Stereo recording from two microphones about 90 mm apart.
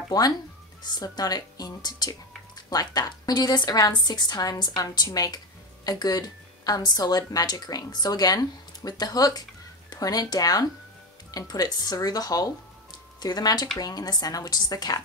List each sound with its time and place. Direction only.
0.1 s a woman's voice: 45° left (ahead or behind)